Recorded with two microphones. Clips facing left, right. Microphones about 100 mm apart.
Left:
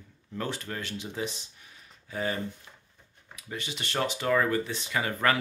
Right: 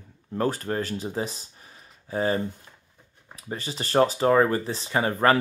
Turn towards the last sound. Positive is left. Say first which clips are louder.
# right 6 dB
turn(degrees=-35)  # may be behind; listen again after turning